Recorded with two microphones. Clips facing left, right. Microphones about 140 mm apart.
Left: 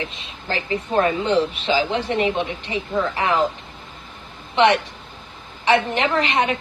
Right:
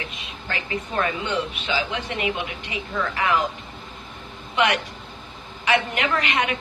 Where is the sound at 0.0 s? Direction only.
30° left (ahead or behind).